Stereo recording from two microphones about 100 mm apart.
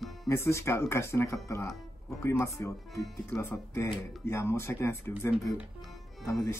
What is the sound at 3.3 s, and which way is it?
Speech, 30° left (ahead or behind).